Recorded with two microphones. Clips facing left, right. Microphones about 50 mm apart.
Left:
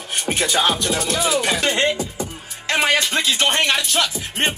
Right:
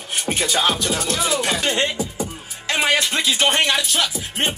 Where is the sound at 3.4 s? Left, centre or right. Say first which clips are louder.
Right 2 dB; centre.